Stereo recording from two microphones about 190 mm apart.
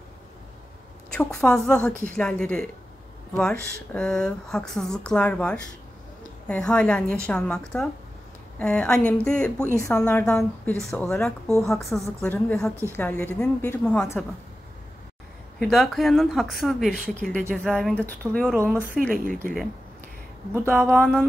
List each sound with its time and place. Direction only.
1.1 s a woman's voice: 5° left (ahead or behind)
9.8 s a woman's voice: 15° left (ahead or behind)
15.6 s a woman's voice: centre (ahead or behind)
20.5 s a woman's voice: 10° right (ahead or behind)